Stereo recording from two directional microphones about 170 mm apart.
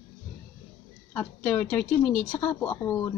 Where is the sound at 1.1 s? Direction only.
10° left (ahead or behind).